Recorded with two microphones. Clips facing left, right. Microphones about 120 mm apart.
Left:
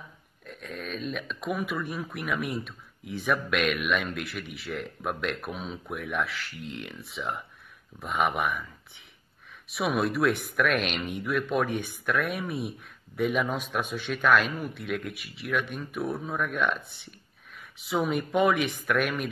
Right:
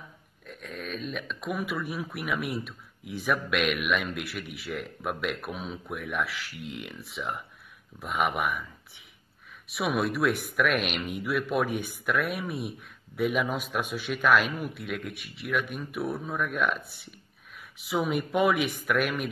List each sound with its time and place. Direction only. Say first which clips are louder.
0.5 s speech: even; centre (ahead or behind)